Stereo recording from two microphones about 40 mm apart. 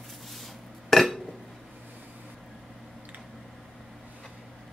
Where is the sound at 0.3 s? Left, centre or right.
Centre.